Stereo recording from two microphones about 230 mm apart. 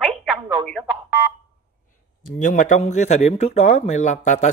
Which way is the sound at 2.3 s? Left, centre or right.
Left.